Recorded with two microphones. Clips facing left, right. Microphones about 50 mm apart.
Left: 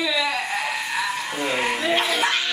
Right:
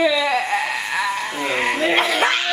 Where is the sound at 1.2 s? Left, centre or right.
Centre.